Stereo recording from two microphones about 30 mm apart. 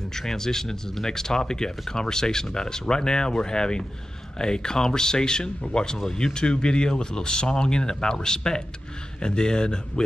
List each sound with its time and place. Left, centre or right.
0.1 s speech: centre